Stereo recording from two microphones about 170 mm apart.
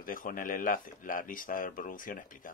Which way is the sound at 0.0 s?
55° left (ahead or behind).